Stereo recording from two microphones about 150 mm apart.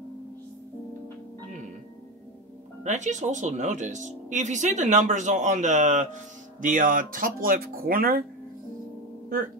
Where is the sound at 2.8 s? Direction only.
55° right (ahead or behind); by 8.2 s 75° right (ahead or behind).